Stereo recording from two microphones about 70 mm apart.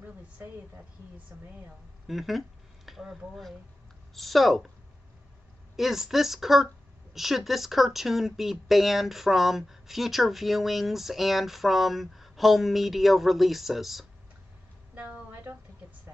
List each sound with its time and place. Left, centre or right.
1.3 s speech: right
2.0 s speech: centre
5.8 s speech: centre
15.0 s a sound: right